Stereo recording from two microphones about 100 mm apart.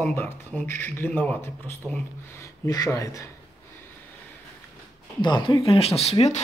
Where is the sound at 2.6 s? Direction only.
40° left (ahead or behind).